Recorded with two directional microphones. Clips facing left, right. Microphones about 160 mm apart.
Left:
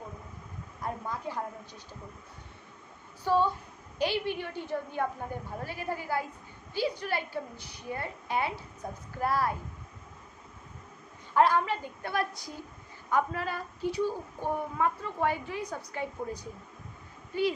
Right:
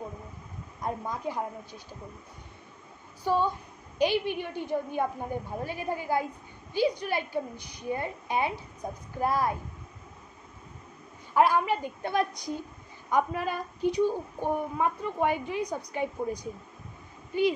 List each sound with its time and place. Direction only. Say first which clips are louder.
0.7 s a woman's voice: right 3 dB; 15° right (ahead or behind)
3.3 s a woman's voice: even; 15° right (ahead or behind)
11.3 s a woman's voice: right 1 dB; 10° right (ahead or behind)